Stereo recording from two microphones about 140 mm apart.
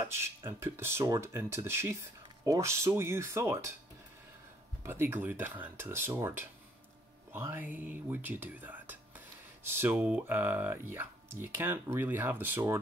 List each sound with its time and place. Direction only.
0.0 s speech: 20° right (ahead or behind)
4.8 s speech: 15° right (ahead or behind)